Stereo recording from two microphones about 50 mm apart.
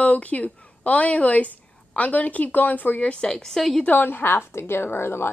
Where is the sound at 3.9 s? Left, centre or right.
Left.